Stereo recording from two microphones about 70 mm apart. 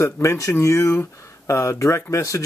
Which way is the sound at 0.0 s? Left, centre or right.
Left.